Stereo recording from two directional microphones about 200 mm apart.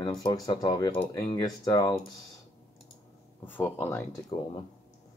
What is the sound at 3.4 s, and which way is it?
Speech, 10° left (ahead or behind).